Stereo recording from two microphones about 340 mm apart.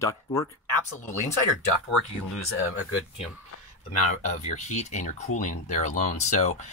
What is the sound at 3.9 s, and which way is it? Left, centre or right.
Speech, centre.